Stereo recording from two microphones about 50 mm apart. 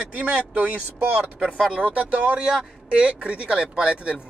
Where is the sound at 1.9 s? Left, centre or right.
Right.